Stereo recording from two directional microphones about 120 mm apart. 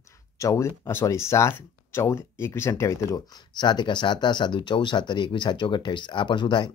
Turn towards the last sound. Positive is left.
turn(degrees=40)  # may be behind; listen again after turning